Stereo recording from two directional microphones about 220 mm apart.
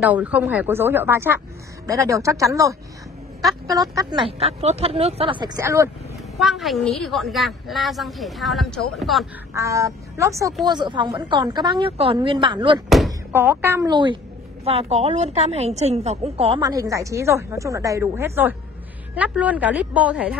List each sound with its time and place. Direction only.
0.0 s speech: 5° right (ahead or behind)
3.9 s speech: 20° right (ahead or behind)
5.6 s speech: 15° right (ahead or behind)
6.3 s a woman's voice: centre (ahead or behind)
9.6 s speech: 15° right (ahead or behind)
12.9 s speech: 5° right (ahead or behind)